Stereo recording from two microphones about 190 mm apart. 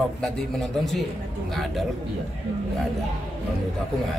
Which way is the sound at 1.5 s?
Centre (ahead or behind).